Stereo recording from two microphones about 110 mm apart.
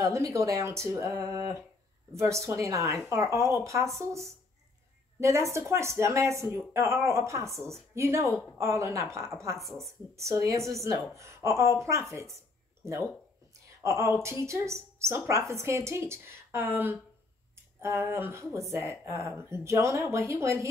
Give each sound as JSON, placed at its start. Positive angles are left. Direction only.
{"t": 0.0, "sound": "speech", "side_deg": -30}
{"t": 5.2, "sound": "speech", "side_deg": -25}
{"t": 13.8, "sound": "speech", "side_deg": -25}